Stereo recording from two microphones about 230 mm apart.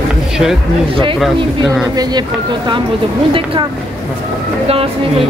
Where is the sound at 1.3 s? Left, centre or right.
Right.